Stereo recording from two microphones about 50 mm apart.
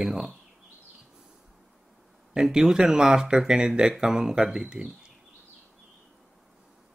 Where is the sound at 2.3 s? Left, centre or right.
Centre.